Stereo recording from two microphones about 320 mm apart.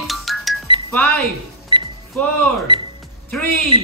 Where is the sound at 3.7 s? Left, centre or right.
Centre.